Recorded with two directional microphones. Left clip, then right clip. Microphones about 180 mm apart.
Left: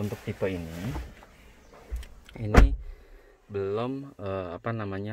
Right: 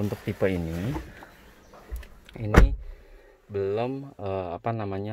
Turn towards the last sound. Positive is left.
turn(degrees=-5)  # may be behind; listen again after turning